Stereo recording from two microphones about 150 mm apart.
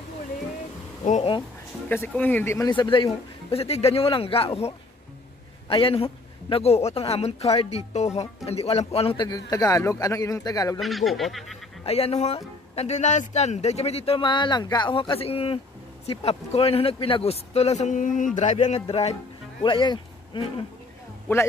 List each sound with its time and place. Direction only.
1.0 s a sound: 55° left (ahead or behind)
1.9 s speech: 10° left (ahead or behind)
2.7 s a man's voice: 30° left (ahead or behind)
10.8 s speech: centre (ahead or behind)
11.8 s a man's voice: 40° left (ahead or behind)
18.8 s a man's voice: 40° left (ahead or behind)
19.6 s speech: 30° left (ahead or behind)